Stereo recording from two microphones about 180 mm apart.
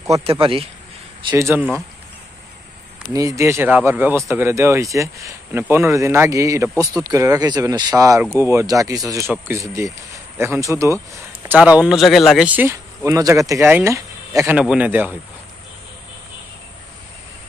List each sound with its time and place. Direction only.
0.2 s a man's voice: 30° right (ahead or behind)
1.3 s speech: 10° right (ahead or behind)
3.1 s speech: 20° right (ahead or behind)